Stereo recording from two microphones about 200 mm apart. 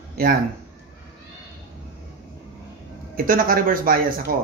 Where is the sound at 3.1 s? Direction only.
45° right (ahead or behind).